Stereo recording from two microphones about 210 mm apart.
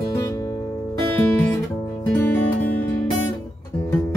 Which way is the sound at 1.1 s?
10° left (ahead or behind).